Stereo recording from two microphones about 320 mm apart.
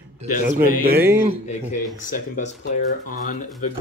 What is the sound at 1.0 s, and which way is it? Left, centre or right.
Speech, centre.